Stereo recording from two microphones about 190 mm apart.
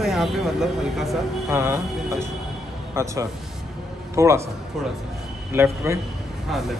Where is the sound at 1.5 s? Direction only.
15° right (ahead or behind).